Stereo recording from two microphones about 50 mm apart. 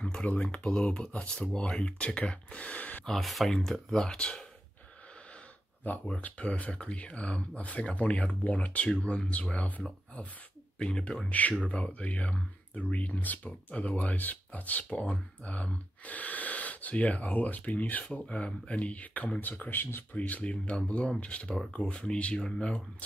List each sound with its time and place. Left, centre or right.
0.0 s speech: left
3.1 s speech: centre
5.9 s speech: left
10.8 s speech: centre
11.2 s speech: left
19.7 s speech: left
20.1 s speech: left; by 22.8 s centre